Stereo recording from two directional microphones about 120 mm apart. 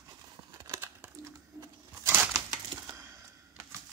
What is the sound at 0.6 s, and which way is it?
Crumpling, 20° right (ahead or behind).